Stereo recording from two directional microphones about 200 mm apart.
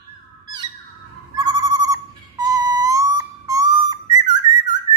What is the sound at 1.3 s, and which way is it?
Owl, 20° right (ahead or behind).